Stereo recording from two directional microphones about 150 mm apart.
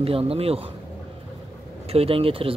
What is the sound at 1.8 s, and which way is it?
Speech, 40° right (ahead or behind).